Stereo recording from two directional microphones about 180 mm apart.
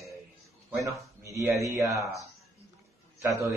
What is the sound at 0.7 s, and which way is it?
Speech, 15° right (ahead or behind).